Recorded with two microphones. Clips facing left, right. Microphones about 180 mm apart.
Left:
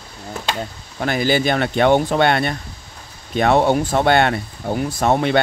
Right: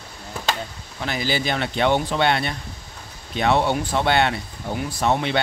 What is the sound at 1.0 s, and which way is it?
Speech, 50° left (ahead or behind).